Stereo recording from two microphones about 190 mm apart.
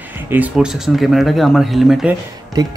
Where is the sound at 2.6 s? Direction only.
20° right (ahead or behind).